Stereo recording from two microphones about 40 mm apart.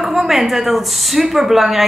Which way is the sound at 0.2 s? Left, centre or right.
Centre.